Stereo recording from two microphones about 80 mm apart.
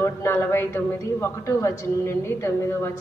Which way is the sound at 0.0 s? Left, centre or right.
Left.